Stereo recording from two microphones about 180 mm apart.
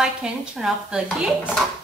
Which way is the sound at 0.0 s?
5° right (ahead or behind).